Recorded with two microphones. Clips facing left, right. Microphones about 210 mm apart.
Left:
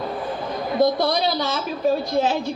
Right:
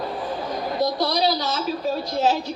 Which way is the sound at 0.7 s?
50° left (ahead or behind).